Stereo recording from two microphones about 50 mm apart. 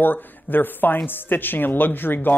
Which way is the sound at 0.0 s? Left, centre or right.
Left.